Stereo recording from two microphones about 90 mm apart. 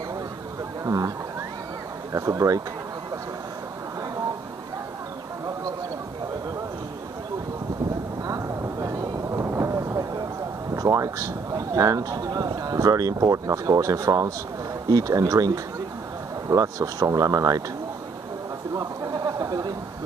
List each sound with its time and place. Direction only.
0.8 s speech: 40° right (ahead or behind)
2.1 s speech: 40° right (ahead or behind)
8.3 s vehicle: 35° right (ahead or behind)
10.8 s speech: 35° right (ahead or behind)
19.1 s a sound: 45° right (ahead or behind)